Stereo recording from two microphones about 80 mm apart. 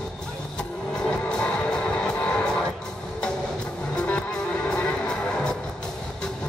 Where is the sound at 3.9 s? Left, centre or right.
Centre.